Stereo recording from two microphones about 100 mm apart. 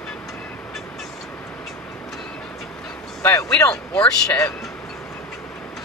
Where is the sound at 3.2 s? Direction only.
25° left (ahead or behind).